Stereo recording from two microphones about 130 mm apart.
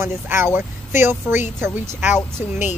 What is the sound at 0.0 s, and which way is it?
Speech, 20° right (ahead or behind).